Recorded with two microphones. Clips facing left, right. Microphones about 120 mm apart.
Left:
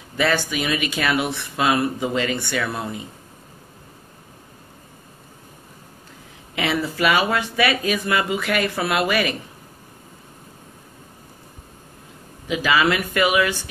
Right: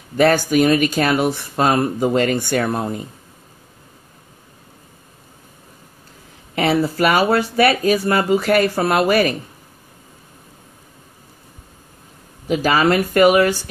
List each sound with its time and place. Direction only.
0.2 s speech: 45° right (ahead or behind)
6.5 s speech: 40° right (ahead or behind)
12.4 s speech: 40° right (ahead or behind)